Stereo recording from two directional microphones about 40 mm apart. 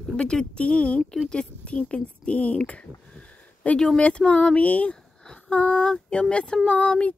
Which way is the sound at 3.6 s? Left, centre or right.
Left.